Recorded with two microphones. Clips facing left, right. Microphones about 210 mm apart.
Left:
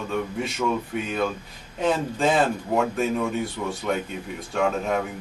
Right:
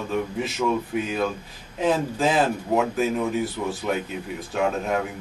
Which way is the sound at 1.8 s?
5° right (ahead or behind).